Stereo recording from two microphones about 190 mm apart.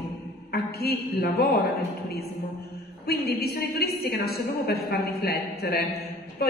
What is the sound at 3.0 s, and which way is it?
A woman's voice, 55° left (ahead or behind).